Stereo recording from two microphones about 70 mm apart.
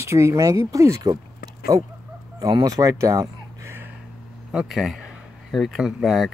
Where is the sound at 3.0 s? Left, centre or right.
Right.